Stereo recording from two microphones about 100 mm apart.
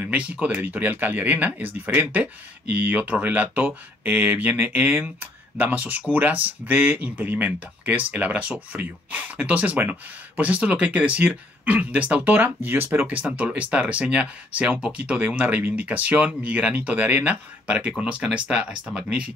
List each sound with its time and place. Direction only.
0.0 s speech: 10° right (ahead or behind)